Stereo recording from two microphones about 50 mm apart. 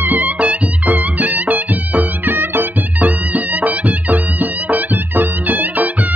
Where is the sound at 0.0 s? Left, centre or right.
Right.